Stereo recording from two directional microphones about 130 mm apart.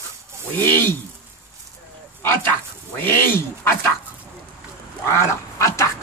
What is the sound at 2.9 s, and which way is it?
Speech, 15° left (ahead or behind).